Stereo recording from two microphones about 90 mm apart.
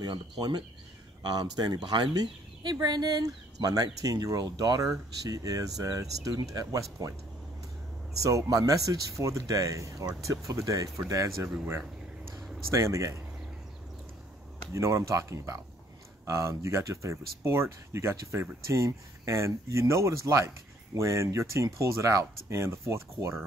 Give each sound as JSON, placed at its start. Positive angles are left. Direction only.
{"t": 0.0, "sound": "speech", "side_deg": -55}
{"t": 8.2, "sound": "speech", "side_deg": -40}
{"t": 12.4, "sound": "a sound", "side_deg": 0}
{"t": 12.7, "sound": "speech", "side_deg": -35}
{"t": 14.7, "sound": "speech", "side_deg": -35}